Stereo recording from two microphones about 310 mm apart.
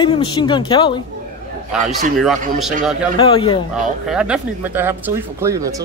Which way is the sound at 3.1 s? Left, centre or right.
Centre.